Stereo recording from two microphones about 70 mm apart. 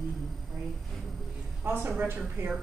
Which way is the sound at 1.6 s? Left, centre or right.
Right.